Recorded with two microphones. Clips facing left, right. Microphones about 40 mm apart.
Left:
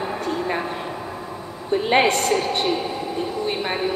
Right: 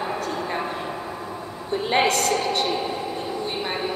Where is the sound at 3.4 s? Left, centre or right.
Centre.